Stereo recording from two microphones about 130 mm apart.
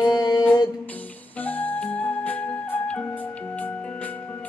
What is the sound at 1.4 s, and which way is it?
Music, 15° left (ahead or behind).